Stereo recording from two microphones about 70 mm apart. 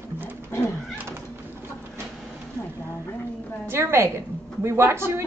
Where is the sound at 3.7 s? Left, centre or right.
Right.